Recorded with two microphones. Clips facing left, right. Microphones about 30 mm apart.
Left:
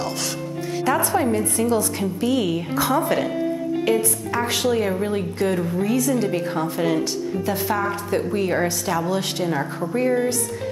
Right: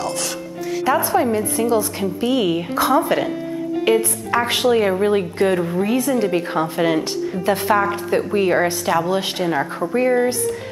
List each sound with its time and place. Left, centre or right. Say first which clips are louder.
0.8 s a woman's voice: right 3 dB; centre
4.3 s a woman's voice: right 6 dB; right; by 10.5 s centre